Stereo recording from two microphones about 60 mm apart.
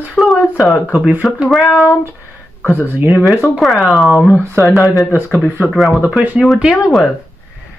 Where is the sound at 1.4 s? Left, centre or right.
Centre.